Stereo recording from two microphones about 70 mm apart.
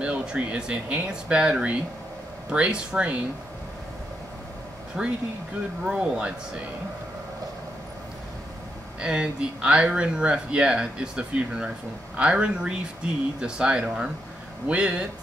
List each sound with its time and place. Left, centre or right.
0.0 s speech: centre
5.0 s speech: centre
9.0 s speech: centre